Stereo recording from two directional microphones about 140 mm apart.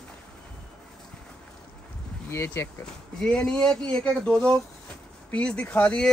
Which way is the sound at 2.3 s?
20° left (ahead or behind).